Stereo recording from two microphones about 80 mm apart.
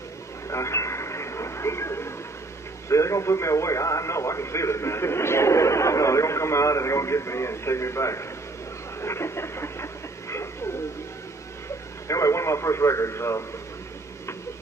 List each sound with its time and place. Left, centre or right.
0.5 s radio: left
2.9 s speech: left
9.0 s a sound: left
12.1 s speech: left